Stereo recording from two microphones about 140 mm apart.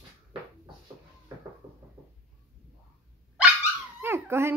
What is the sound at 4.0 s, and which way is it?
Dog, 15° right (ahead or behind).